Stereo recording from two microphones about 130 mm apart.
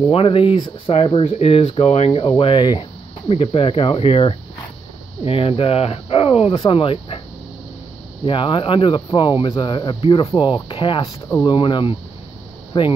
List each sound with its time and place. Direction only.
0.1 s speech: 45° left (ahead or behind)
6.5 s speech: 35° left (ahead or behind)
8.3 s speech: 40° left (ahead or behind)